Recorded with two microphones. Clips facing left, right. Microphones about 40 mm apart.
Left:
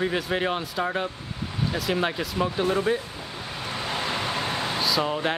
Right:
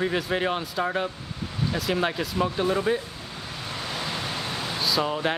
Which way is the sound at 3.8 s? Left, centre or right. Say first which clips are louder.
Left 3 dB; left.